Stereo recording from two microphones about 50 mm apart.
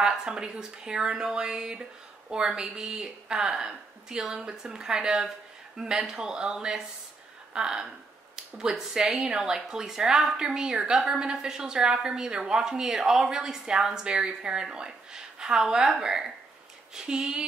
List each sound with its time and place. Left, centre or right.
0.0 s a woman's voice: centre